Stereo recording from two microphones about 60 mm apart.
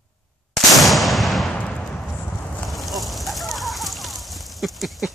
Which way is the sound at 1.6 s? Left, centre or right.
Centre.